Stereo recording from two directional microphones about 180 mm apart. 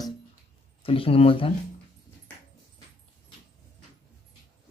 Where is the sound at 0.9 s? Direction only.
30° left (ahead or behind).